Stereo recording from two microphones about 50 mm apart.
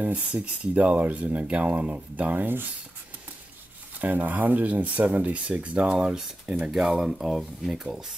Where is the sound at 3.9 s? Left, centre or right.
Right; by 7.8 s centre.